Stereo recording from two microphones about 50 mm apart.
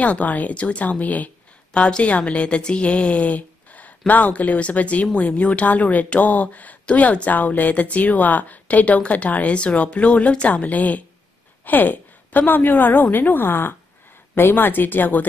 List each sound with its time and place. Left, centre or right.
0.0 s speech: left
1.7 s a woman's voice: centre; by 15.2 s left